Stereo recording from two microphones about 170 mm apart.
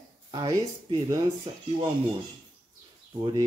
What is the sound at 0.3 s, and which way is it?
Speech, 25° right (ahead or behind).